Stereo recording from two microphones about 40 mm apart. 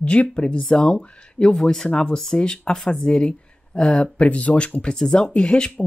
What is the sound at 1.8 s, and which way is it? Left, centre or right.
Speech, left.